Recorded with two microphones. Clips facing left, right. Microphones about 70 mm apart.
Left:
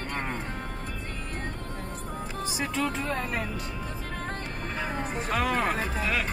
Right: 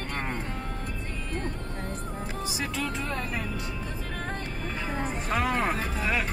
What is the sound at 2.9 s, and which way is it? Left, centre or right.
Speech, left.